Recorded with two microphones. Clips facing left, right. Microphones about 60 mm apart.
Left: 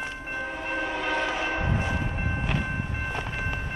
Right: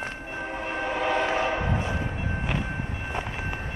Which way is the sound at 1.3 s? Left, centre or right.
Right.